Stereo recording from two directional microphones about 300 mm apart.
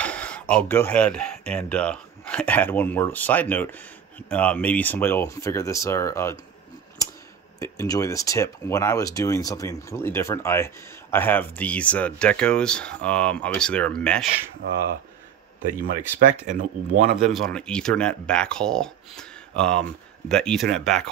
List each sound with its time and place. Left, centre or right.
0.0 s speech: centre
7.0 s a sound: centre
7.6 s speech: centre
16.3 s speech: right
17.2 s speech: centre